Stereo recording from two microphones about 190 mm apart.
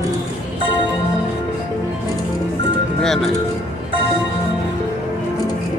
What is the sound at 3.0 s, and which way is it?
Music, centre (ahead or behind).